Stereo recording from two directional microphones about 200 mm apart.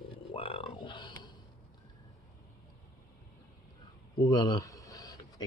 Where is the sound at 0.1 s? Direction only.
25° left (ahead or behind).